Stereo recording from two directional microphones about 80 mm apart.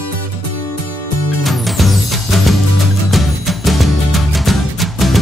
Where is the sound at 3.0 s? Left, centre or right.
Centre.